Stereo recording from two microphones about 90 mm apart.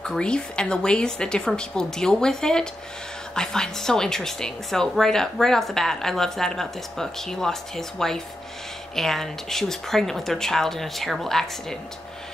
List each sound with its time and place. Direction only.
0.0 s a woman's voice: 10° left (ahead or behind)